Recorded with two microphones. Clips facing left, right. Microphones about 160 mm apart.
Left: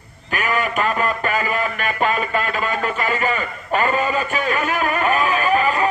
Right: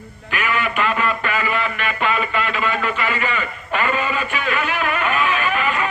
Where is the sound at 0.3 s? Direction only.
40° left (ahead or behind).